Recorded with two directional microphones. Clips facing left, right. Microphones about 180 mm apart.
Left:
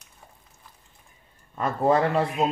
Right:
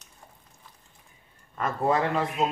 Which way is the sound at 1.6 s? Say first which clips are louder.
Left 4 dB; 30° left (ahead or behind).